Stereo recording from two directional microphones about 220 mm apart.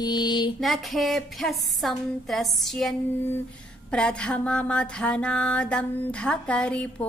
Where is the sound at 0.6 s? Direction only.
Centre (ahead or behind).